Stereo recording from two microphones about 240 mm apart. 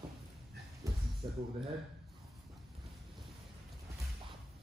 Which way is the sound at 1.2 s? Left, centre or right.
Right.